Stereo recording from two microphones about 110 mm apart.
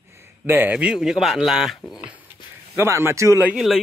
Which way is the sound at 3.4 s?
5° right (ahead or behind).